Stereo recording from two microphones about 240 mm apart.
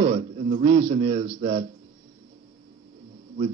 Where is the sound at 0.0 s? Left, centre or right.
Right.